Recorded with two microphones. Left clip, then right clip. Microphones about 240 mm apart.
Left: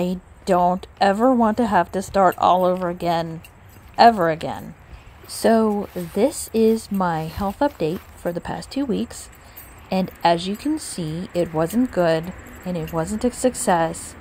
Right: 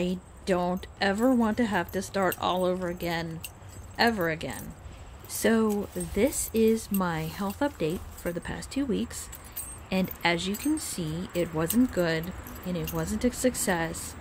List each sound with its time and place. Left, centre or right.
0.0 s a woman's voice: centre